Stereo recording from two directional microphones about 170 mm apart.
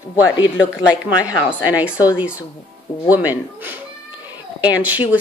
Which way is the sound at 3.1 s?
10° right (ahead or behind).